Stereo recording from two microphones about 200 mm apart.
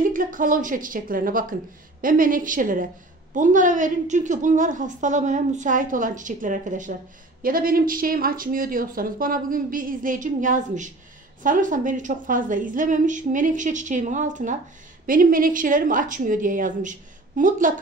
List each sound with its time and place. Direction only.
0.1 s a woman's voice: 40° right (ahead or behind)